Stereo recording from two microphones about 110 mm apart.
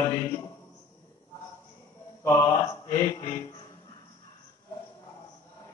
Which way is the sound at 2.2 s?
25° left (ahead or behind).